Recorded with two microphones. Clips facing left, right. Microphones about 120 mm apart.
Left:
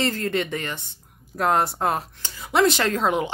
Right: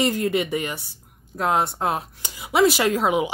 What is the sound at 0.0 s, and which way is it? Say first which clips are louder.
A woman's voice: right 3 dB; 15° right (ahead or behind).